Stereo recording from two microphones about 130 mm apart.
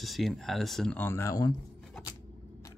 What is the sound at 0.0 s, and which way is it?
Speech, centre (ahead or behind).